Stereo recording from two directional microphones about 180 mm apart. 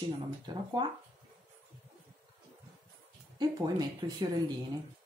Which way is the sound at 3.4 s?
20° right (ahead or behind).